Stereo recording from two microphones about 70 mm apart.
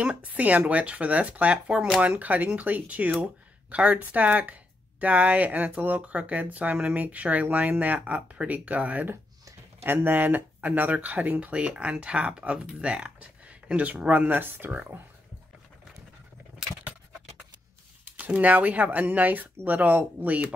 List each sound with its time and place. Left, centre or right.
0.0 s speech: right
18.0 s speech: right